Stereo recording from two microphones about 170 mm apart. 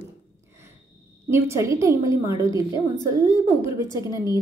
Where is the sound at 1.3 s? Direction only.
15° right (ahead or behind).